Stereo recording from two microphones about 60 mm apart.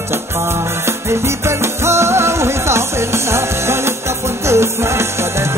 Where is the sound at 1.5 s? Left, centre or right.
Right.